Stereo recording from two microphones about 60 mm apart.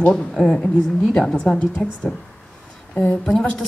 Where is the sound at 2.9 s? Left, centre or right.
Left.